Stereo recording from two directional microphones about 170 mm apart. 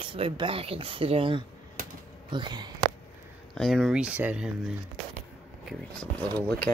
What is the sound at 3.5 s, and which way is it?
Speech, centre (ahead or behind).